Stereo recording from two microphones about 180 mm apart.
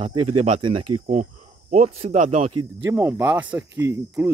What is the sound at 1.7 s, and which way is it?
Speech, 40° right (ahead or behind).